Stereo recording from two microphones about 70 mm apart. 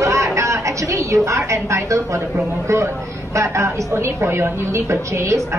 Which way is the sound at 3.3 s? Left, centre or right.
Right.